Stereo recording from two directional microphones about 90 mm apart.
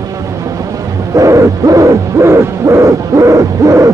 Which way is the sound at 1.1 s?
35° right (ahead or behind).